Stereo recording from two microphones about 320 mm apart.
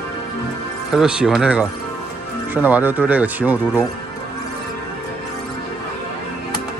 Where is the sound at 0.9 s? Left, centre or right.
Centre.